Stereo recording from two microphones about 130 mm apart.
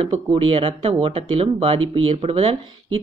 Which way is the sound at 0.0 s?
40° right (ahead or behind).